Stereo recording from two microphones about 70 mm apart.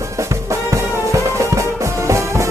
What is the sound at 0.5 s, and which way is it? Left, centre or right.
Music, right.